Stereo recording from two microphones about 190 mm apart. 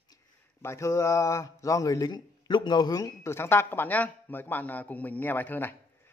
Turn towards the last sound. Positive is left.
turn(degrees=10)  # may be behind; listen again after turning